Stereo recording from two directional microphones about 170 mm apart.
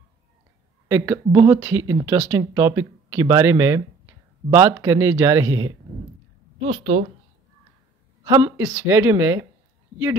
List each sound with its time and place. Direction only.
0.8 s speech: 15° right (ahead or behind)
6.6 s a woman's voice: 35° right (ahead or behind)
8.2 s speech: 20° right (ahead or behind)